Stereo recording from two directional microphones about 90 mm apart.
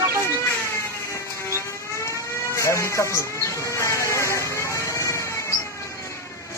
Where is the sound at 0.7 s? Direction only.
30° left (ahead or behind).